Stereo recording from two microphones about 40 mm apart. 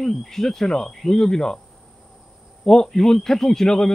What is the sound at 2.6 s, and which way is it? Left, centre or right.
Speech, centre.